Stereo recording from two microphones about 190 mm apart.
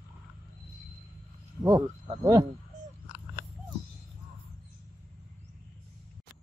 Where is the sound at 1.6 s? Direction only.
15° right (ahead or behind).